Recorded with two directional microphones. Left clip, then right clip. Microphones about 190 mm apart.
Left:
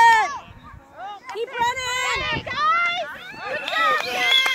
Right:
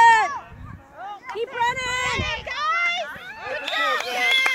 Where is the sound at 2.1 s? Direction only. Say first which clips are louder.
Left 2 dB; 35° left (ahead or behind).